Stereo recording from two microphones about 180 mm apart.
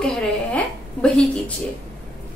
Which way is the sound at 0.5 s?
5° left (ahead or behind).